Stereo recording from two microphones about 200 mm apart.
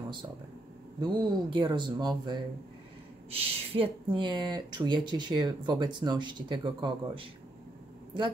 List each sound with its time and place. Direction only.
1.0 s speech: 25° right (ahead or behind)